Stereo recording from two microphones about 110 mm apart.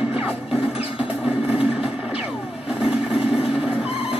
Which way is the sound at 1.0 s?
10° right (ahead or behind).